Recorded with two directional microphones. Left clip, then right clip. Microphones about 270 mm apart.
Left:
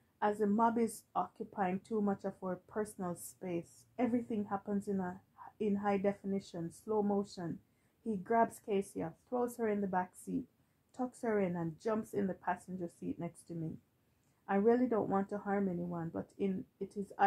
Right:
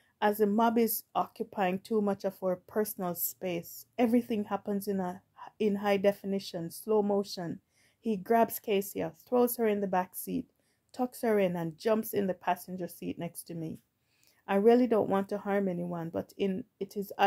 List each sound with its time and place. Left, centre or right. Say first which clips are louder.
0.2 s speech: right 5 dB; right